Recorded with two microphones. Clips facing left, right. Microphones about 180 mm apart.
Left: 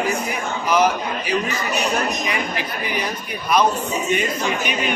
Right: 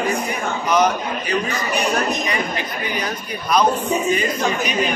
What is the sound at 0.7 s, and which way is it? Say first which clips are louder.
Speech: even; 5° left (ahead or behind).